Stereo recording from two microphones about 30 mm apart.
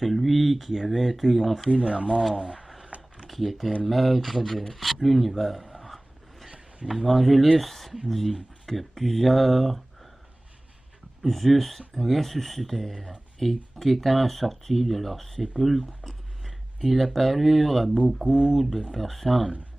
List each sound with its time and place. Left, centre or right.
0.0 s speech: centre
1.8 s speech: right
2.9 s a sound: right
3.3 s speech: centre
6.9 s speech: centre
11.2 s speech: centre